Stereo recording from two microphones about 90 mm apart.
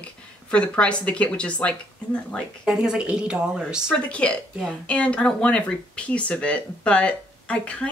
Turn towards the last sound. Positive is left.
turn(degrees=15)  # may be behind; listen again after turning